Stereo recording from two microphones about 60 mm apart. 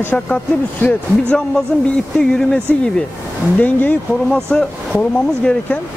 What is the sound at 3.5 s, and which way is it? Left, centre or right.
Speech, left.